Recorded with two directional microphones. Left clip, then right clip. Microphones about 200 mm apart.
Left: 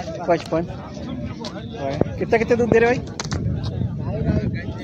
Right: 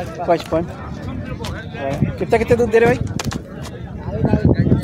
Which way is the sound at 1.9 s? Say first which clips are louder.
Right 2 dB; 10° right (ahead or behind).